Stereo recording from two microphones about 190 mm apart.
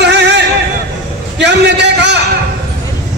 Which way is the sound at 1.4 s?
65° right (ahead or behind).